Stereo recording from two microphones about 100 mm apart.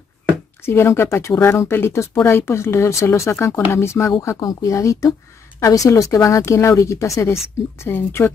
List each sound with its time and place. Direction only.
0.7 s speech: 25° left (ahead or behind)